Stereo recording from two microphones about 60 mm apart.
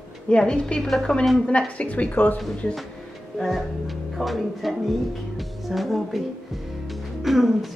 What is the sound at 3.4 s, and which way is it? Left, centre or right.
A woman's voice, centre.